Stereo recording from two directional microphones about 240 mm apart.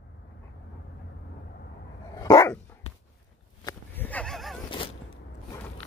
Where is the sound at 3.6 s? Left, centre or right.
Centre.